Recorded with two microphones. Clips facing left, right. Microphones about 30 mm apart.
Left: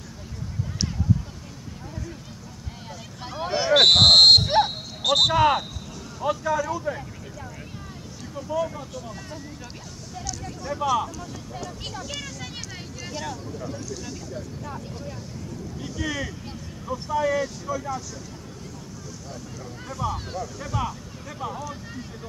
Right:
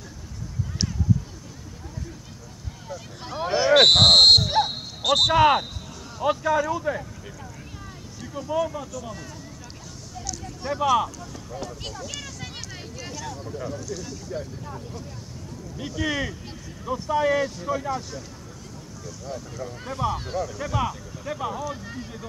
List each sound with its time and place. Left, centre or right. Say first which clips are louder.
3.6 s a sound: even; centre
4.4 s a sound: left 2 dB; left
5.0 s a sound: even; centre
5.3 s vehicle: right 2 dB; right
6.2 s speech: right 2 dB; right
10.6 s speech: right 3 dB; right
11.8 s speech: left 1 dB; centre
15.8 s speech: right 3 dB; right
19.6 s speech: right 2 dB; right
20.3 s speech: right 3 dB; right